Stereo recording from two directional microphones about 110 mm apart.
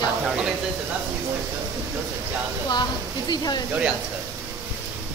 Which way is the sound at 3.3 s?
40° left (ahead or behind).